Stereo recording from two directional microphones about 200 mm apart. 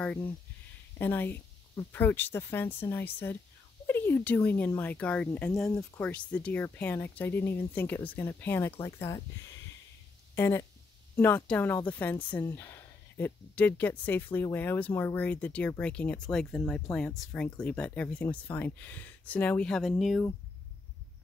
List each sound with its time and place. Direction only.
0.9 s speech: 10° left (ahead or behind)
10.3 s speech: 10° left (ahead or behind)